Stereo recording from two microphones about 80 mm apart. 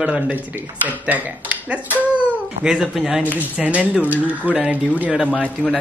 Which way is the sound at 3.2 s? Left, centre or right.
Centre.